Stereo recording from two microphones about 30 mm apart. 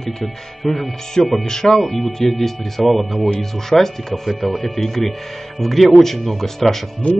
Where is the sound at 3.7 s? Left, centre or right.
Centre.